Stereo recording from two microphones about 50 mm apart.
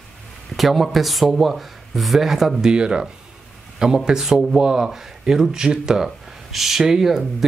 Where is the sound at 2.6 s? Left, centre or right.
Centre.